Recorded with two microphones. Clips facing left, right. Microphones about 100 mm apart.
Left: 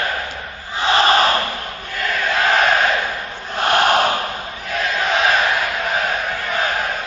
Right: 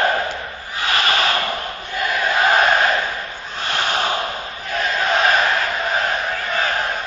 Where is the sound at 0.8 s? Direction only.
30° left (ahead or behind).